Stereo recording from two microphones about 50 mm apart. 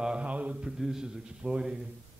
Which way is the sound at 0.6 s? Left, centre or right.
Centre.